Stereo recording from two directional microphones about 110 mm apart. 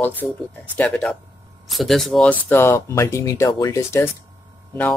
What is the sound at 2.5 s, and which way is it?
Speech, 25° left (ahead or behind).